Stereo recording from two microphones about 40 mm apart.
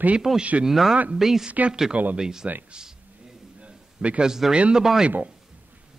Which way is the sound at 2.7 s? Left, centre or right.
Centre.